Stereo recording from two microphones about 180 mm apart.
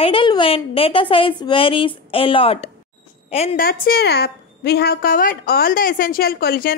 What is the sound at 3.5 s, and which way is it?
A woman's voice, 55° left (ahead or behind).